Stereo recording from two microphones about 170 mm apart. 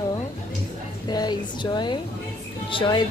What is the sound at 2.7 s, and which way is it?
Speech, 30° left (ahead or behind).